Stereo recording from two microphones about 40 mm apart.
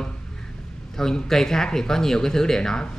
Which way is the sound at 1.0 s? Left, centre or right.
Centre.